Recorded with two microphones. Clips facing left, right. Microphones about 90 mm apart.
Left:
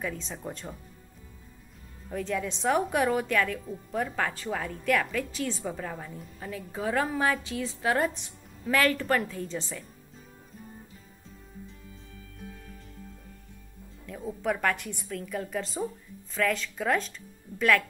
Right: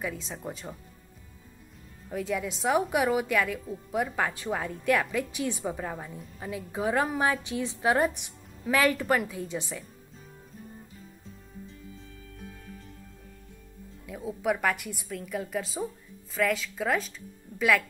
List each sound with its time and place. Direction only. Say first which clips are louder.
0.0 s a woman's voice: even; 5° right (ahead or behind)
2.0 s a woman's voice: even; 5° right (ahead or behind)
14.0 s a woman's voice: right 1 dB; 5° right (ahead or behind)